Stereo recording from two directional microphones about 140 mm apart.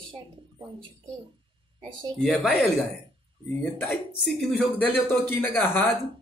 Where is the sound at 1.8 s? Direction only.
35° right (ahead or behind).